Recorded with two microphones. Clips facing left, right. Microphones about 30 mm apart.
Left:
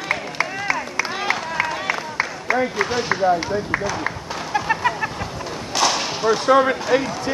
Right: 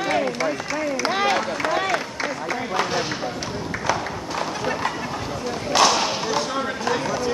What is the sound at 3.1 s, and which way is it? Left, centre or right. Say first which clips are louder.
Speech: left 9 dB; centre.